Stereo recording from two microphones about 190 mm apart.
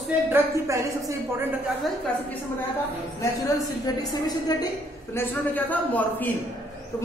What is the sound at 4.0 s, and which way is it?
A woman's voice, 20° left (ahead or behind).